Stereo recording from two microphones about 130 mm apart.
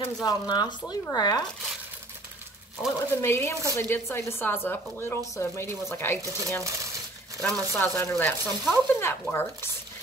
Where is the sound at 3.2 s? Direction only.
20° left (ahead or behind).